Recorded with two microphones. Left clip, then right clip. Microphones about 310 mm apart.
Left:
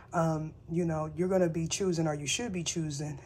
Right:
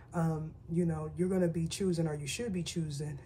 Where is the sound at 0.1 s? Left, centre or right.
Centre.